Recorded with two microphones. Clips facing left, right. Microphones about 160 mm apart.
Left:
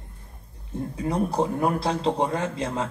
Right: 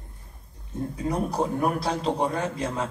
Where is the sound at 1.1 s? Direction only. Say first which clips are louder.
Left 2 dB; 25° left (ahead or behind).